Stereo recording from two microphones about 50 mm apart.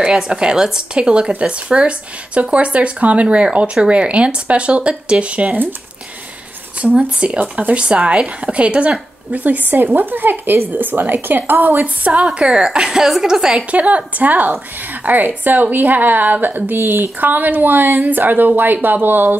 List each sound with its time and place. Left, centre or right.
0.0 s a woman's voice: centre
6.8 s speech: right
12.4 s a woman's voice: centre
13.7 s speech: right